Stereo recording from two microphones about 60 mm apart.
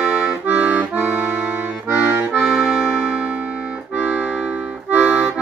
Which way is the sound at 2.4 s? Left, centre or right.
Centre.